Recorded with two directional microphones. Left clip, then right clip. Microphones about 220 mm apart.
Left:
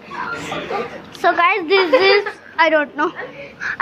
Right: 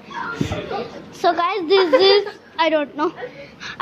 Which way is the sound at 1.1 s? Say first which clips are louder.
Left 4 dB; 10° right (ahead or behind).